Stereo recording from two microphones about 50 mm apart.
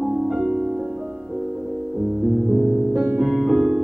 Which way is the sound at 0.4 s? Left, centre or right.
Centre.